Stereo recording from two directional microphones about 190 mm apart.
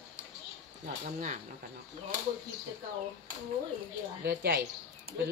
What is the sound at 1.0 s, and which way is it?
Speech, 45° right (ahead or behind).